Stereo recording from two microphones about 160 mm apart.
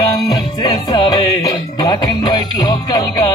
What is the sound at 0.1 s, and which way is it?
Music, 25° left (ahead or behind).